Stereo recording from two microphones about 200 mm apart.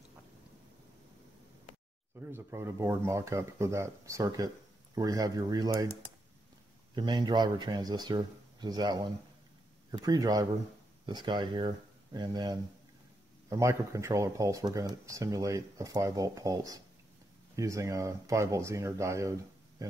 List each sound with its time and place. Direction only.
2.1 s speech: 10° right (ahead or behind)
7.0 s speech: 20° right (ahead or behind)